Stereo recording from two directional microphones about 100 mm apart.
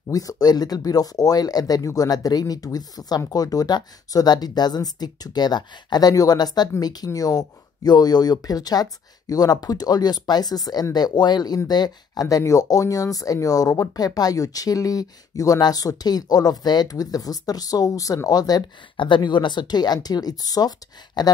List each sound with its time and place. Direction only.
0.1 s speech: 35° left (ahead or behind)
18.9 s speech: 55° left (ahead or behind)